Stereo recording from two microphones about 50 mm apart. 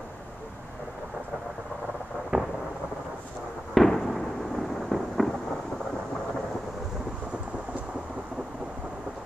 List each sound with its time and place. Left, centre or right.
2.3 s thunder: centre
3.7 s fireworks: centre